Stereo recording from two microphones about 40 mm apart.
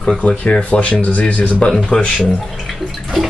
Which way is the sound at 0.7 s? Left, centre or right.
Left.